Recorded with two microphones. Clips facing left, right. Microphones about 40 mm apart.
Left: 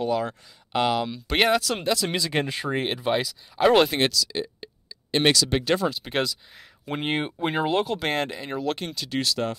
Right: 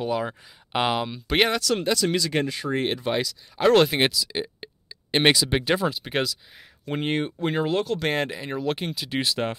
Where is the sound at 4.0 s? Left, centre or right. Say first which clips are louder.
Right 1 dB; centre.